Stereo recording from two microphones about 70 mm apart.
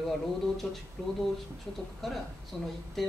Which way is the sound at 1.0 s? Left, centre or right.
Centre.